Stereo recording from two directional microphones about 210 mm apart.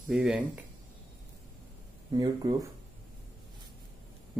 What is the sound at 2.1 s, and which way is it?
Speech, 15° right (ahead or behind).